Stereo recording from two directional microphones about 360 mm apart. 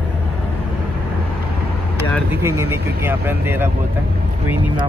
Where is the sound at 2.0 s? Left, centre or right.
Centre.